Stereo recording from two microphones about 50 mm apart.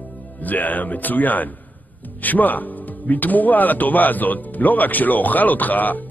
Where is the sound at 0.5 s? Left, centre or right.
Left.